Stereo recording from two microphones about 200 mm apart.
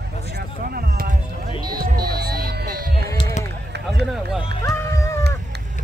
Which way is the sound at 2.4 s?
45° right (ahead or behind).